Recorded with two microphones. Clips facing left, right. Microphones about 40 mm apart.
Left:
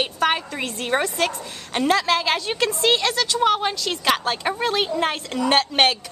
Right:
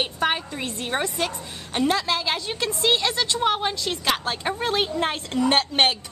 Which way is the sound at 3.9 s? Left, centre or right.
Left.